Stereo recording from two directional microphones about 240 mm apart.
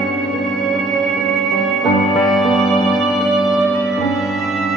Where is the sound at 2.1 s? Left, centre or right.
Centre.